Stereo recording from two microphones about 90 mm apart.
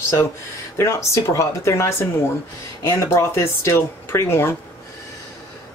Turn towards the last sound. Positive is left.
turn(degrees=30)  # may be behind; listen again after turning